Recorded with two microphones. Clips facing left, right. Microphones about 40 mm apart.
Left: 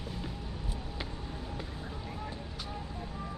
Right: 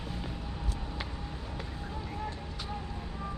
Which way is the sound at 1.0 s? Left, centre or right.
Centre.